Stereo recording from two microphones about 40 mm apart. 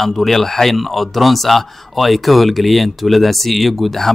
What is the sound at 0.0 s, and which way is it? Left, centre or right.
Speech, centre.